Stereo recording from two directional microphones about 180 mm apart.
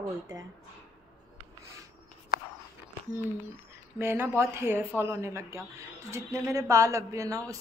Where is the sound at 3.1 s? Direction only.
10° right (ahead or behind).